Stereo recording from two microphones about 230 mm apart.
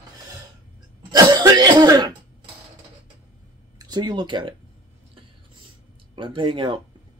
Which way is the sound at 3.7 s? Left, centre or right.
Centre.